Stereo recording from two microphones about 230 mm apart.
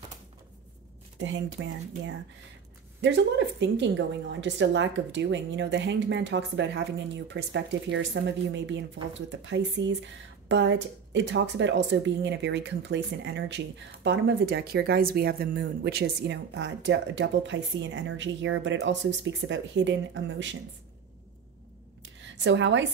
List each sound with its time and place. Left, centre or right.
1.2 s speech: right
22.2 s speech: right